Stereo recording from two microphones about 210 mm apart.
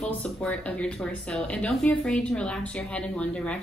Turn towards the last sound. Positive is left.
turn(degrees=5)  # may be behind; listen again after turning